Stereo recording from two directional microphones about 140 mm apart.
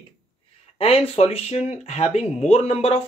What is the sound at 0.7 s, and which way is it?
Speech, 45° left (ahead or behind).